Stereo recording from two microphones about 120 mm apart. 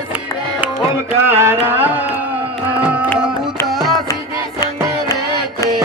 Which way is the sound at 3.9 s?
30° left (ahead or behind).